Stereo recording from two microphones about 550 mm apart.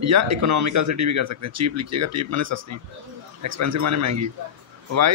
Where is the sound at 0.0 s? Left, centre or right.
Right.